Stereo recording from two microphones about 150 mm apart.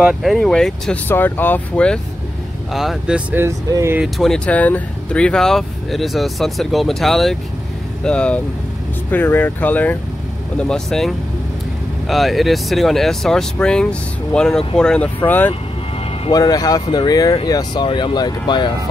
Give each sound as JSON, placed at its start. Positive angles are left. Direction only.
{"t": 0.0, "sound": "speech", "side_deg": 0}
{"t": 2.7, "sound": "speech", "side_deg": 0}
{"t": 4.0, "sound": "speech", "side_deg": 0}
{"t": 16.3, "sound": "speech", "side_deg": 25}